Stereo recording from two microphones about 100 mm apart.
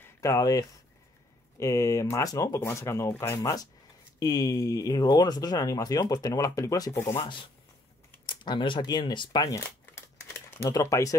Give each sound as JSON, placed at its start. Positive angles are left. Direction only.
{"t": 0.0, "sound": "speech", "side_deg": 30}
{"t": 8.3, "sound": "speech", "side_deg": 50}
{"t": 9.6, "sound": "crumpling", "side_deg": 25}
{"t": 10.7, "sound": "speech", "side_deg": 30}